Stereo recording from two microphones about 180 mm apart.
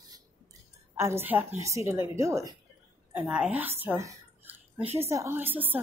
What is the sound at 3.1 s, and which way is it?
A woman's voice, 5° right (ahead or behind).